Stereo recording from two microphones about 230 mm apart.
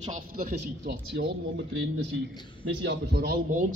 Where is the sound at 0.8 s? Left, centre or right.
Right.